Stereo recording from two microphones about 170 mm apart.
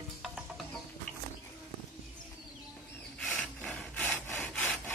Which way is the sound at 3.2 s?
5° left (ahead or behind).